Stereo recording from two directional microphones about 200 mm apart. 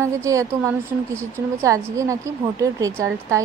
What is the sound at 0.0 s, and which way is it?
Speech, 15° right (ahead or behind).